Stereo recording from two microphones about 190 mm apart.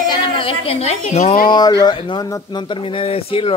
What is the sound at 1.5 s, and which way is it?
Speech, 20° left (ahead or behind).